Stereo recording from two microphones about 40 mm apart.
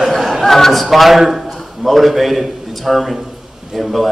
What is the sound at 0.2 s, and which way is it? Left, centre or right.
A man's voice, centre.